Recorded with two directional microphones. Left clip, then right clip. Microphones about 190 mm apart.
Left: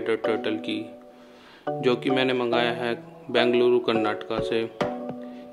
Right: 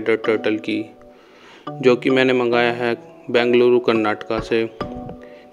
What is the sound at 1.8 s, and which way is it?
Speech, 35° right (ahead or behind).